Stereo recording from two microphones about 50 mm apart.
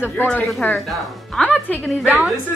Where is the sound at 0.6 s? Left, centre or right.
Left.